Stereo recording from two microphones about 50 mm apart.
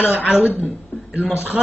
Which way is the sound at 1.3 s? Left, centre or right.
Right.